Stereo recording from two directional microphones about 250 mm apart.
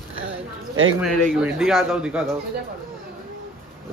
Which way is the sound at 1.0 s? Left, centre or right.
Centre.